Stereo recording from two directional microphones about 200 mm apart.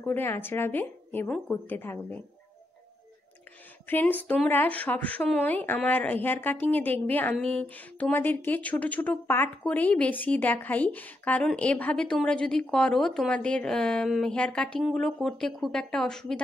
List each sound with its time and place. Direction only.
0.0 s a woman's voice: 10° left (ahead or behind)
3.8 s a woman's voice: 10° left (ahead or behind)